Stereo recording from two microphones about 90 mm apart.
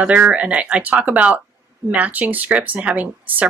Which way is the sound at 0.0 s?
15° right (ahead or behind).